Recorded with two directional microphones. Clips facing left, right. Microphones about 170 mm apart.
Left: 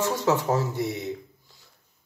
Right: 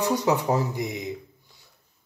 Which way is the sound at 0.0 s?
15° right (ahead or behind).